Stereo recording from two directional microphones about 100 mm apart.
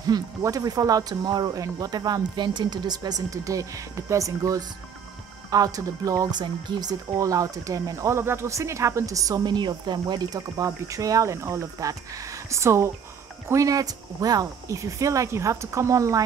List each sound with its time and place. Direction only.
0.0 s speech: 40° right (ahead or behind)
6.4 s speech: 45° right (ahead or behind)